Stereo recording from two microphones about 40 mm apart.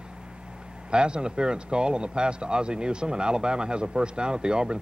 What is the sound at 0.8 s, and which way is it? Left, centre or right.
Speech, right.